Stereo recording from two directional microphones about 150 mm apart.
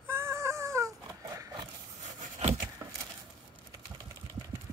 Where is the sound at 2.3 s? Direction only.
50° right (ahead or behind).